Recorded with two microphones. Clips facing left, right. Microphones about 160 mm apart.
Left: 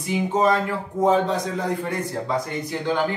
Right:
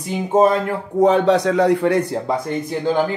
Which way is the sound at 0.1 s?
55° right (ahead or behind).